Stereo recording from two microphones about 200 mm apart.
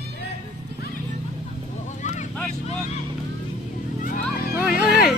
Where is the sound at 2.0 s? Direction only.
40° left (ahead or behind).